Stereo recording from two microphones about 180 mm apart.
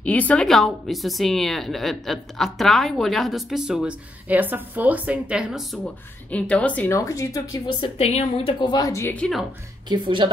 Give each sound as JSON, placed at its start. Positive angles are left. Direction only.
{"t": 0.0, "sound": "a woman's voice", "side_deg": 10}
{"t": 9.8, "sound": "speech", "side_deg": -25}